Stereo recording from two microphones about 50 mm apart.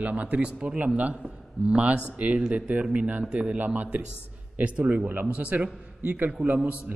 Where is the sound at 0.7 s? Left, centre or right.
Right.